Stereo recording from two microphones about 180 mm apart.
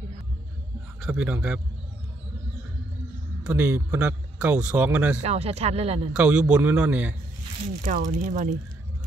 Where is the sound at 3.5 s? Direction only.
10° right (ahead or behind).